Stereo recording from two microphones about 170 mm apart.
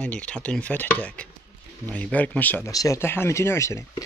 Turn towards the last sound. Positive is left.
turn(degrees=15)  # may be behind; listen again after turning